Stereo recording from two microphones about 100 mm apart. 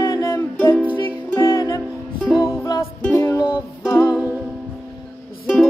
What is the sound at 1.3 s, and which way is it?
Music, 35° left (ahead or behind).